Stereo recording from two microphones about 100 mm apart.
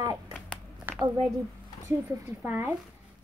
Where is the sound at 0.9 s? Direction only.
20° right (ahead or behind).